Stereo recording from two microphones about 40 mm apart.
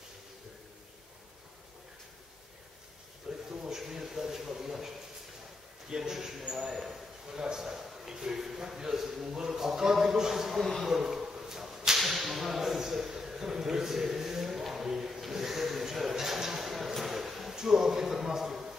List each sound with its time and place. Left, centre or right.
3.3 s a sound: centre
5.9 s a man's voice: centre
6.9 s a sound: centre
8.1 s a man's voice: centre
10.6 s speech: centre
10.9 s whip: centre